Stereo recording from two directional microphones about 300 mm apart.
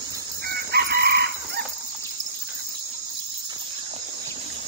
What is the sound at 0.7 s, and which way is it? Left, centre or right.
Chicken, right.